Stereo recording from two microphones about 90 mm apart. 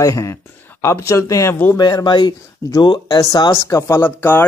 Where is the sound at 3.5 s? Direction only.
30° left (ahead or behind).